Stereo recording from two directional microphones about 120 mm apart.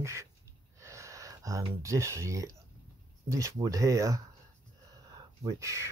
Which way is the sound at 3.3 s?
25° right (ahead or behind).